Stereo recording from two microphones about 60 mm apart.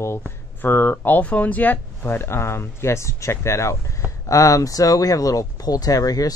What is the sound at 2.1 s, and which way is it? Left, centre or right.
Speech, left.